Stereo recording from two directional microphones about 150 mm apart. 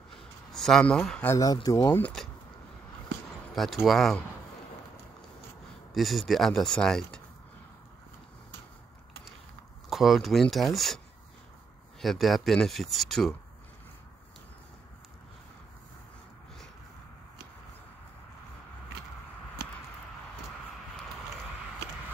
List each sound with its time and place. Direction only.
0.5 s speech: 5° left (ahead or behind)
1.3 s speech: 25° left (ahead or behind)
3.5 s speech: centre (ahead or behind)
5.9 s speech: centre (ahead or behind)
9.8 s speech: centre (ahead or behind)
12.0 s speech: centre (ahead or behind)
19.6 s a sound: 90° right